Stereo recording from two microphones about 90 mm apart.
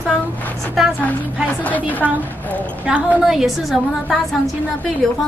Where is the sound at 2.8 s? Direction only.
15° right (ahead or behind).